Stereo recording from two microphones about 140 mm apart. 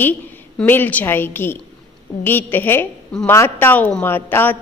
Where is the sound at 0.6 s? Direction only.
10° left (ahead or behind).